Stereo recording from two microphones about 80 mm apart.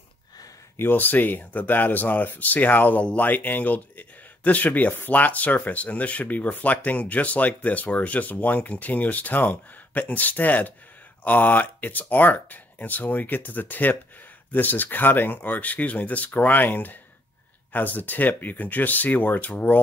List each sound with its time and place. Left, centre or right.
0.7 s speech: left